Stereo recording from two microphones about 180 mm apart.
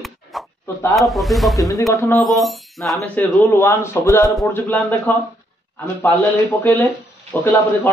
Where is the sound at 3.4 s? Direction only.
15° left (ahead or behind).